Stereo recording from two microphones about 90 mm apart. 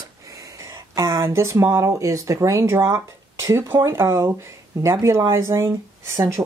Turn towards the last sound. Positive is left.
turn(degrees=-30)  # may be behind; listen again after turning